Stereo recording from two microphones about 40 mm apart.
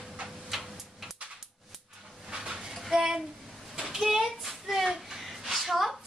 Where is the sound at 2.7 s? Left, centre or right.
Centre.